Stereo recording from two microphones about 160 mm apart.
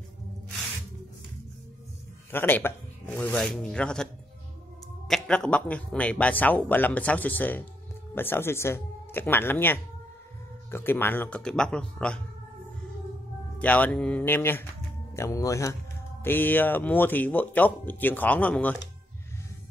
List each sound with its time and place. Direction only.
2.3 s speech: 15° left (ahead or behind)
13.6 s speech: 10° left (ahead or behind)